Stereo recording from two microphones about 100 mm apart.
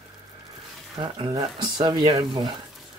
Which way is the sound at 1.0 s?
50° right (ahead or behind).